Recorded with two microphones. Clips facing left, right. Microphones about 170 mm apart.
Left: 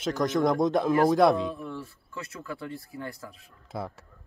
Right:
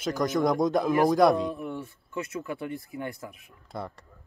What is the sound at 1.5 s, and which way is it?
Speech, 20° right (ahead or behind).